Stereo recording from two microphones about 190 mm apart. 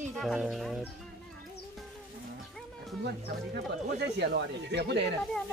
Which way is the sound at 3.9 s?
60° right (ahead or behind).